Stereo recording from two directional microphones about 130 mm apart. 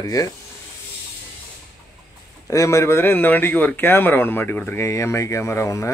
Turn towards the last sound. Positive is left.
turn(degrees=20)  # may be behind; listen again after turning